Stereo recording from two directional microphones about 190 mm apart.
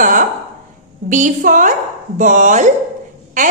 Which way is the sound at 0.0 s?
45° right (ahead or behind).